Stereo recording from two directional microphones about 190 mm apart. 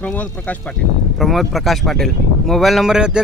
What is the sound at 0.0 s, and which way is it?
Speech, 5° left (ahead or behind).